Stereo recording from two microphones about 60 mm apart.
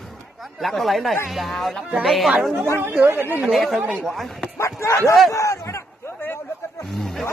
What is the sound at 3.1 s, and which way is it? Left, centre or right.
Speech, right.